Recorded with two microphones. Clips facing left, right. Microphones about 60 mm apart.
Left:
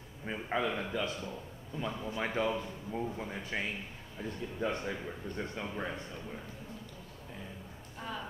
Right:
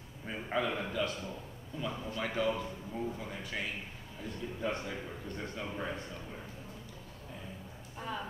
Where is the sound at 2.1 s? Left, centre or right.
Left.